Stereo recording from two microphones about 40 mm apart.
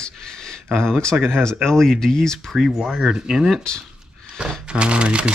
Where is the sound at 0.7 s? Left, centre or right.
Centre.